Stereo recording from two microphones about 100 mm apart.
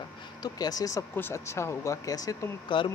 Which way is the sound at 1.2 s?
25° left (ahead or behind).